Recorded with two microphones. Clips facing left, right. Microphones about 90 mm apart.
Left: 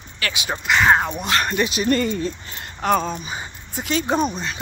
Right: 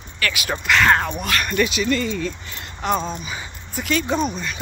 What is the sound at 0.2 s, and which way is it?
Speech, 25° left (ahead or behind).